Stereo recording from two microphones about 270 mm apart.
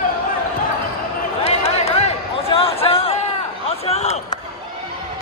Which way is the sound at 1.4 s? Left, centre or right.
Left.